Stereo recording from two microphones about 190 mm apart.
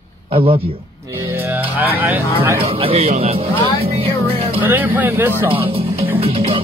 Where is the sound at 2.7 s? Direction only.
30° right (ahead or behind).